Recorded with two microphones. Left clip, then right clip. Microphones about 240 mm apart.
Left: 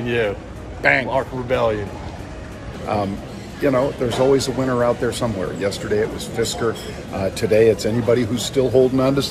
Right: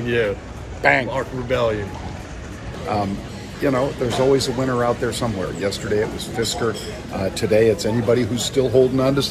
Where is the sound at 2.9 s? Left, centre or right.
Centre.